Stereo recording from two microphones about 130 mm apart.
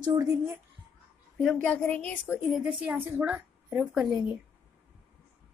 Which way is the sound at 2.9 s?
15° right (ahead or behind).